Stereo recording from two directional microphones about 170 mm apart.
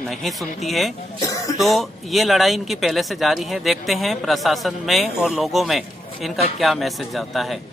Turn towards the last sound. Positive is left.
turn(degrees=0)  # may be behind; listen again after turning